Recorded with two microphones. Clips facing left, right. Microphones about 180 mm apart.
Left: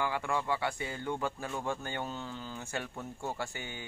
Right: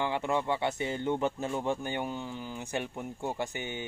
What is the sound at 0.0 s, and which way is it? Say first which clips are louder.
Speech: right 3 dB; 20° right (ahead or behind).